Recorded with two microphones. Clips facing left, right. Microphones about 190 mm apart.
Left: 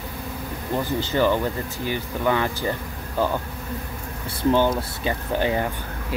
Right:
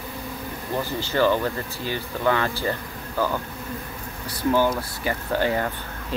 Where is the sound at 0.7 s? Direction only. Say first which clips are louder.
Left 1 dB; 15° left (ahead or behind).